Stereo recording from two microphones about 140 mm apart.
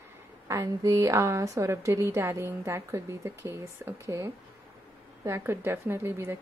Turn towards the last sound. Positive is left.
turn(degrees=-15)  # may be behind; listen again after turning